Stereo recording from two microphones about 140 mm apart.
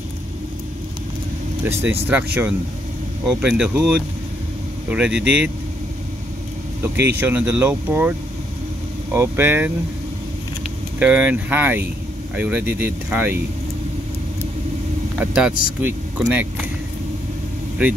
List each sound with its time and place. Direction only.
1.6 s speech: 15° right (ahead or behind)
6.8 s speech: 15° right (ahead or behind)
9.1 s speech: 15° right (ahead or behind)
11.0 s speech: 10° right (ahead or behind)
15.1 s speech: 10° right (ahead or behind)